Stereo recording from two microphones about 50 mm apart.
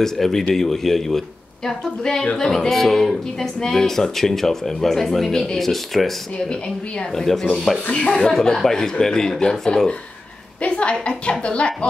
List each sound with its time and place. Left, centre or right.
0.0 s speech: centre
6.5 s a woman's voice: centre
8.3 s a woman's voice: centre